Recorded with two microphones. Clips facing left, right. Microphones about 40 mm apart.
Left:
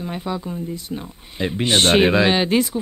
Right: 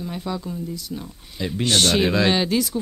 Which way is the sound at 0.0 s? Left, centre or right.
Left.